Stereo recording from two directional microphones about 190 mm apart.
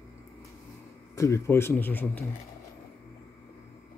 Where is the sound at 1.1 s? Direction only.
15° left (ahead or behind).